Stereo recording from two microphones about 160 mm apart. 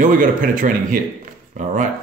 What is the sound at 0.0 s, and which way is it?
Speech, 55° right (ahead or behind).